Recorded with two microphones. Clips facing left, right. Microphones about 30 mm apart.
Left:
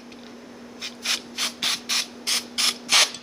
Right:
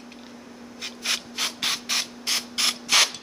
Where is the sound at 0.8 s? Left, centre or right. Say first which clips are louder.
Even; centre.